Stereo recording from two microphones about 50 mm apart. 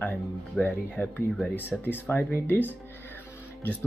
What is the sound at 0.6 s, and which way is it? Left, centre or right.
Speech, left.